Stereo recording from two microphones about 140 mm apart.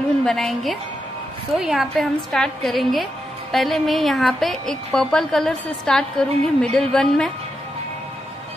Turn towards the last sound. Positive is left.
turn(degrees=5)  # may be behind; listen again after turning